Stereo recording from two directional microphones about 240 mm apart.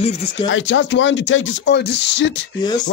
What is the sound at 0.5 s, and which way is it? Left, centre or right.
Speech, left.